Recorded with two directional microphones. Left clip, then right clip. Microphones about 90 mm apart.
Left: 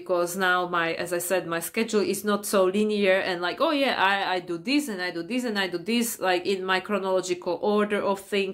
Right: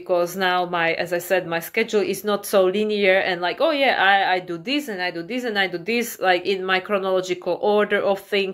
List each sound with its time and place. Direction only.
0.1 s speech: 35° left (ahead or behind)